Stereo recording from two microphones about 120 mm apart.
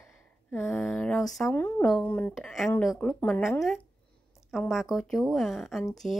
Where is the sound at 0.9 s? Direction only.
5° left (ahead or behind).